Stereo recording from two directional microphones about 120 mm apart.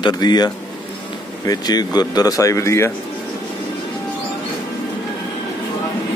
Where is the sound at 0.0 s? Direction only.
35° left (ahead or behind).